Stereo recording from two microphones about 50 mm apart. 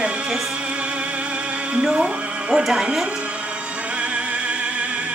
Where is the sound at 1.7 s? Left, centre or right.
Right.